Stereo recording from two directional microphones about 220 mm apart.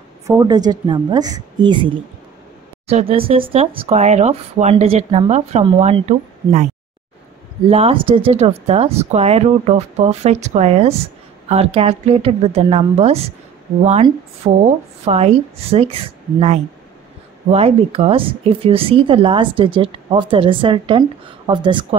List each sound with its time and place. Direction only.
0.3 s speech: 20° right (ahead or behind)
2.9 s speech: 25° right (ahead or behind)
7.7 s speech: 25° right (ahead or behind)